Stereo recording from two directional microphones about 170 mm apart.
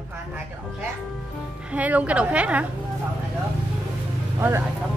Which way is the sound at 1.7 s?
10° right (ahead or behind).